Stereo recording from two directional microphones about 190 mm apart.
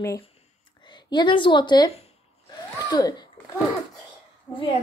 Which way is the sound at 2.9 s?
20° left (ahead or behind).